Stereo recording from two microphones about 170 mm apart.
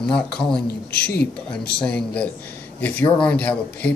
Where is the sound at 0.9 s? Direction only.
65° left (ahead or behind).